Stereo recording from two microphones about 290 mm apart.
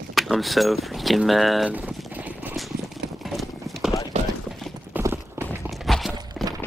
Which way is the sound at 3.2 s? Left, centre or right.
Centre.